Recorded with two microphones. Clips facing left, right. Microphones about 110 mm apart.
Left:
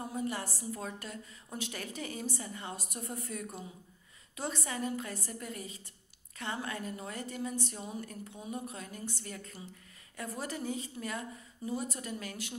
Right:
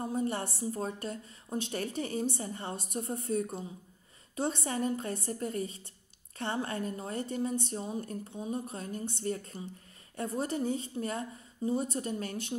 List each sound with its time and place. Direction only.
0.1 s a woman's voice: 30° right (ahead or behind)